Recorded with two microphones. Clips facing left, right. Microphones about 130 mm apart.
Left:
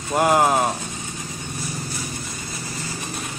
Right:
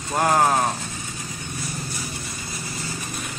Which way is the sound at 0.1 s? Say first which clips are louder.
Left 2 dB; 10° left (ahead or behind).